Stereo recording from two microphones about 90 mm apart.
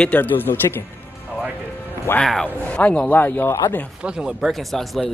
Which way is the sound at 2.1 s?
10° left (ahead or behind).